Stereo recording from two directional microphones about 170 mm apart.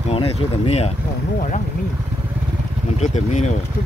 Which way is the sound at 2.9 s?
40° left (ahead or behind).